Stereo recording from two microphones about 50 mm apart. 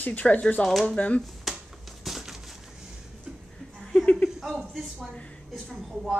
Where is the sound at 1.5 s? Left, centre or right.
Centre.